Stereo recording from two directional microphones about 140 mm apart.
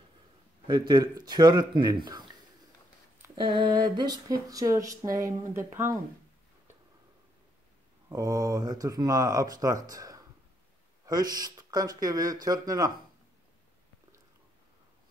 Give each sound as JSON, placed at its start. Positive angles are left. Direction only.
{"t": 0.7, "sound": "speech", "side_deg": -30}
{"t": 3.5, "sound": "speech", "side_deg": -30}
{"t": 8.1, "sound": "speech", "side_deg": -25}